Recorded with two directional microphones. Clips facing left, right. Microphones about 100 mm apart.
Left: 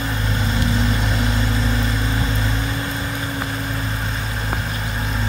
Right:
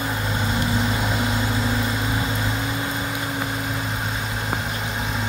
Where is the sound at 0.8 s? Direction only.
15° right (ahead or behind).